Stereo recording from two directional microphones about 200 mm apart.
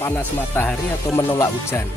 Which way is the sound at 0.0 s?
10° left (ahead or behind).